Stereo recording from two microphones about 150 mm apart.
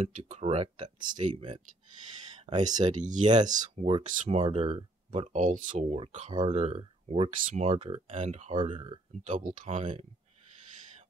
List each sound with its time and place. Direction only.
0.0 s speech: 45° right (ahead or behind); by 1.2 s 30° right (ahead or behind)
2.5 s speech: 30° right (ahead or behind)
2.8 s speech: 50° right (ahead or behind); by 9.0 s 35° right (ahead or behind)
9.2 s speech: 55° right (ahead or behind)